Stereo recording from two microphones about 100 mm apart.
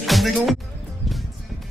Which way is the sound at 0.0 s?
Centre (ahead or behind).